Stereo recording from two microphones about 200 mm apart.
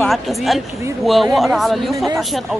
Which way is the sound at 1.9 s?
15° right (ahead or behind).